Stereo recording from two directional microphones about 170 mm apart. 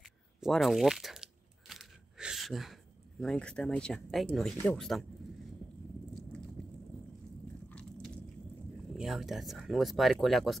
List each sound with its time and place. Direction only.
0.0 s crunch: centre (ahead or behind)
4.6 s speech: 5° left (ahead or behind)
8.9 s speech: centre (ahead or behind)